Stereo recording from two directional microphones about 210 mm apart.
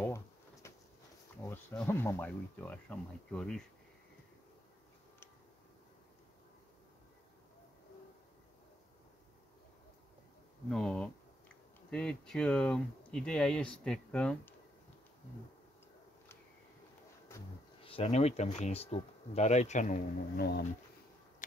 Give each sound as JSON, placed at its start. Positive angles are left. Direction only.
{"t": 0.0, "sound": "insect", "side_deg": 15}
{"t": 1.5, "sound": "speech", "side_deg": 10}
{"t": 10.7, "sound": "speech", "side_deg": 5}
{"t": 17.8, "sound": "speech", "side_deg": 30}
{"t": 20.3, "sound": "speech", "side_deg": 50}